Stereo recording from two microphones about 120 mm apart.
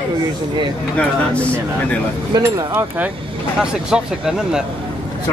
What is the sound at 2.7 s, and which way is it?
Speech, 15° right (ahead or behind).